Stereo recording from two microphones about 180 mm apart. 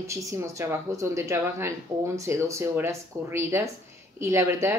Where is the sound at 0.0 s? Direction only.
15° right (ahead or behind).